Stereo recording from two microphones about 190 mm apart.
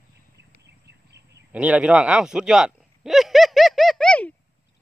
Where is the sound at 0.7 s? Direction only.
65° right (ahead or behind).